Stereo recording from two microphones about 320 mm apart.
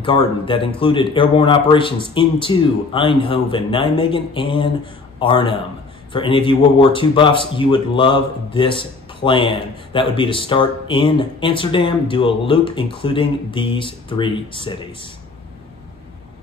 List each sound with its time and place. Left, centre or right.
0.0 s speech: centre